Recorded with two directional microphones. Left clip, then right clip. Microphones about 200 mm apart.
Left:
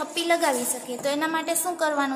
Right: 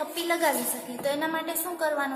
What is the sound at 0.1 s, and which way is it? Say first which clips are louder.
A woman's voice: left 4 dB; 50° left (ahead or behind).